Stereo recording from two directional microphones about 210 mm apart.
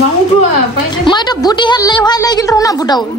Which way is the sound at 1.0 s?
20° left (ahead or behind).